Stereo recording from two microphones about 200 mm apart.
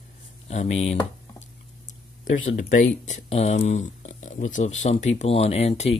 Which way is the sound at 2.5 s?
35° left (ahead or behind).